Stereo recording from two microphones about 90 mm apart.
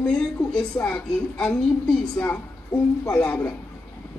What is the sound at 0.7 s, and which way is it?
Speech, 20° left (ahead or behind).